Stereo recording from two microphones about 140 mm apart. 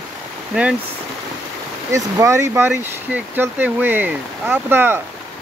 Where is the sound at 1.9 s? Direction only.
25° right (ahead or behind).